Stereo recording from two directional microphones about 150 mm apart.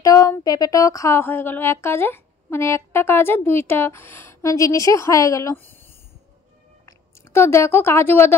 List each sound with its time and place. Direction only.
0.0 s a woman's voice: 20° left (ahead or behind)
6.9 s speech: 20° left (ahead or behind)